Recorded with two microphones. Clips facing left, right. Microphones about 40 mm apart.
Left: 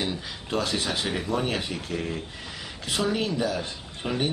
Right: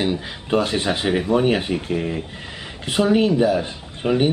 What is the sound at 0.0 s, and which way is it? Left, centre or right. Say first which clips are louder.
A man's voice: right 8 dB; right.